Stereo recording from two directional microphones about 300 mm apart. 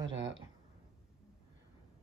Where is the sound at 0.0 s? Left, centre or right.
Right.